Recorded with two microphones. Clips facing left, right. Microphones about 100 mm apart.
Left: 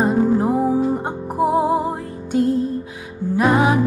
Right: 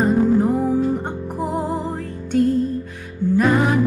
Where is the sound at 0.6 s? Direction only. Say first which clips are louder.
Left 1 dB; 10° left (ahead or behind).